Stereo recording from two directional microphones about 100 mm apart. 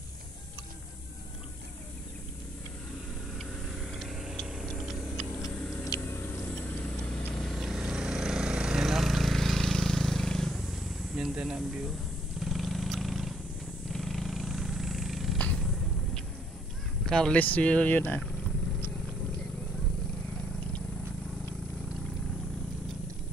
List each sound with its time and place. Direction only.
3.9 s vehicle: centre (ahead or behind)
4.5 s a sound: centre (ahead or behind)
6.8 s vehicle: 5° left (ahead or behind)
15.3 s purr: 15° left (ahead or behind)
17.0 s speech: 5° left (ahead or behind)